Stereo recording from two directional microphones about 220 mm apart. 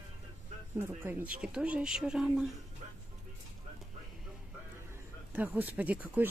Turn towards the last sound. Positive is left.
turn(degrees=-5)  # may be behind; listen again after turning